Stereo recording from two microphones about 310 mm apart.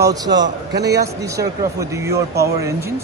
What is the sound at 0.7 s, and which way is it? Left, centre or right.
Speech, right.